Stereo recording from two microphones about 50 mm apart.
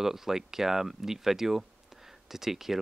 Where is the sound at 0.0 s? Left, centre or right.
Centre.